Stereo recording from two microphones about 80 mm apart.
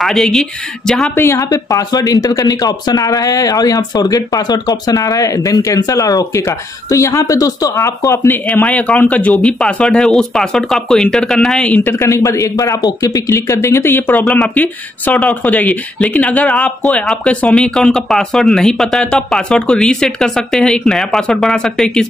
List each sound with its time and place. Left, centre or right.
0.0 s speech: centre
1.1 s speech: left
1.4 s speech: left
8.6 s speech: centre
11.7 s speech: left
12.1 s speech: left; by 22.0 s centre